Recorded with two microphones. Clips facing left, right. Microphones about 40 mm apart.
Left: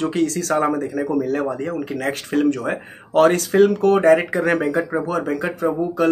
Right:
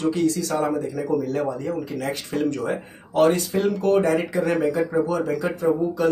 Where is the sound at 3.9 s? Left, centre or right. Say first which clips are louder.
Left 5 dB; left.